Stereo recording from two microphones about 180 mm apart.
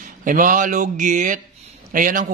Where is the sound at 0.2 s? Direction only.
50° right (ahead or behind).